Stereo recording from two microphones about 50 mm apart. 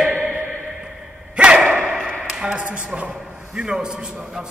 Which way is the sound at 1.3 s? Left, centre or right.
Centre.